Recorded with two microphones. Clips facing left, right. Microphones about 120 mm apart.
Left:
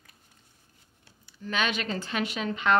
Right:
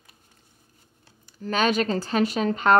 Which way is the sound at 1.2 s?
45° right (ahead or behind).